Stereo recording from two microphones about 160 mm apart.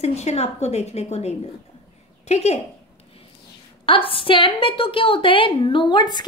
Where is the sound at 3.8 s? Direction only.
35° left (ahead or behind).